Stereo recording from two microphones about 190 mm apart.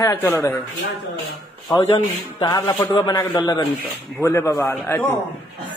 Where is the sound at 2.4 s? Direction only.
20° left (ahead or behind).